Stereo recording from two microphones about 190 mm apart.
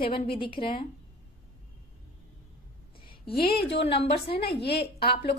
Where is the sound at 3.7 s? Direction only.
65° left (ahead or behind).